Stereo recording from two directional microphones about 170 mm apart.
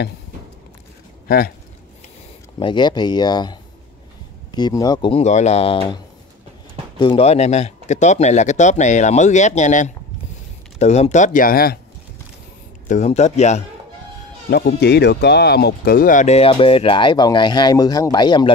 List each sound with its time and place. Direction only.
2.6 s speech: 25° left (ahead or behind)
5.2 s speech: 40° left (ahead or behind)
7.0 s speech: 35° left (ahead or behind); by 11.8 s 60° left (ahead or behind)
12.8 s speech: 45° left (ahead or behind)
14.8 s speech: 75° left (ahead or behind); by 18.5 s 25° left (ahead or behind)